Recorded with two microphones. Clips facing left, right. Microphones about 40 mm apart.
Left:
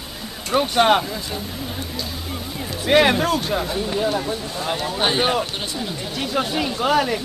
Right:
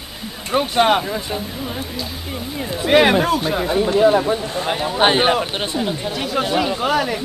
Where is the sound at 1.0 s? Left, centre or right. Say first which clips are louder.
Right 4 dB; right.